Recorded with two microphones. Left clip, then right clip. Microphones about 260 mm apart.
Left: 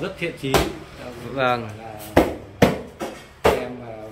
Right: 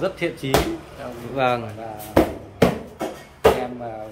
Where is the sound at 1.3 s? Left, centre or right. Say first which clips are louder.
Even; centre.